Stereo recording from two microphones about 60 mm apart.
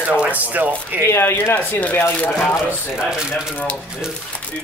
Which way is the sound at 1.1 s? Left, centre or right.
Left.